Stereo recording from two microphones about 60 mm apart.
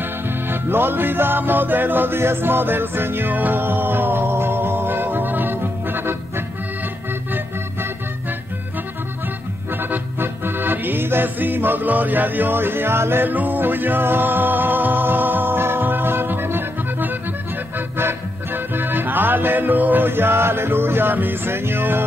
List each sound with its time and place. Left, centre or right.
0.0 s music: right
9.7 s music: right
13.3 s music: right